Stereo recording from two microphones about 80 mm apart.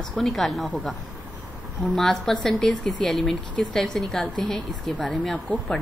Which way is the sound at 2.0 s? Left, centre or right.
Centre.